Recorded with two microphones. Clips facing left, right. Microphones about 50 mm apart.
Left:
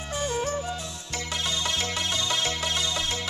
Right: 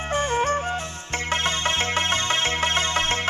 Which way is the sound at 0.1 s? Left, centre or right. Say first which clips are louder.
Right 6 dB; right.